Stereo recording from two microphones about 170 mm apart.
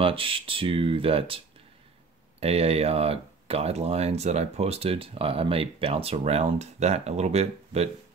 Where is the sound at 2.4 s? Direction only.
35° right (ahead or behind).